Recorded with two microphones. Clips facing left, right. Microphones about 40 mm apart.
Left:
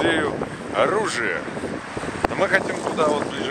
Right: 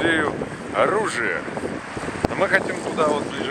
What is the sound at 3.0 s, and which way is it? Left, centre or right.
Speech, left.